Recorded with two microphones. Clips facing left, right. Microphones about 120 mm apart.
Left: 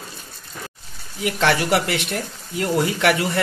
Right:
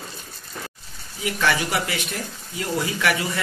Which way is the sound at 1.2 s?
65° left (ahead or behind).